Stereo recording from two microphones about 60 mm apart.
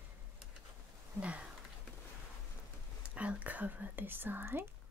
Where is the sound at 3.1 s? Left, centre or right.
Right.